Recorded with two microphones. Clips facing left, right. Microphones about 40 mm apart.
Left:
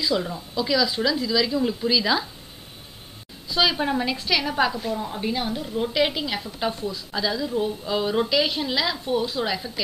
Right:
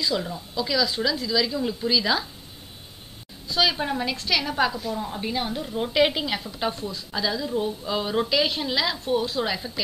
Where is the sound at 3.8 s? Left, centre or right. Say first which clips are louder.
Left 3 dB; centre.